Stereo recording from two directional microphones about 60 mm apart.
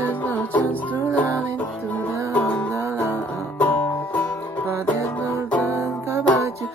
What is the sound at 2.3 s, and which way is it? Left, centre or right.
Music, left.